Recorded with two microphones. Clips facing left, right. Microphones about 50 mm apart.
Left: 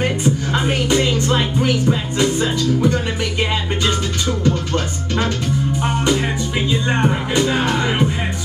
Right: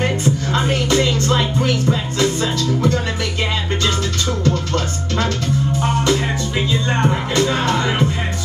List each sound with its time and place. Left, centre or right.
0.0 s music: centre
5.8 s music: centre